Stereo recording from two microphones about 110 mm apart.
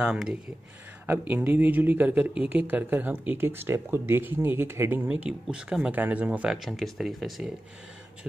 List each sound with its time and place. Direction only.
0.0 s speech: 5° right (ahead or behind)
1.0 s speech: 15° right (ahead or behind); by 7.5 s centre (ahead or behind)